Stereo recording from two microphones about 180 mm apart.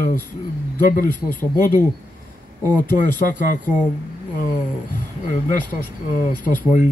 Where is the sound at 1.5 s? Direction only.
50° left (ahead or behind).